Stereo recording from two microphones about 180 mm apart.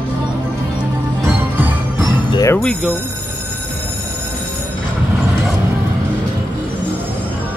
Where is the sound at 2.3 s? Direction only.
20° left (ahead or behind).